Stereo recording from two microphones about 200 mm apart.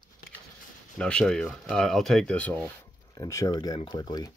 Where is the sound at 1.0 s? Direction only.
5° left (ahead or behind).